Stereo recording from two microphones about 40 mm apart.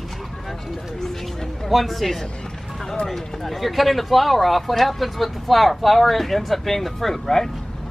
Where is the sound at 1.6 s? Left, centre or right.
Centre.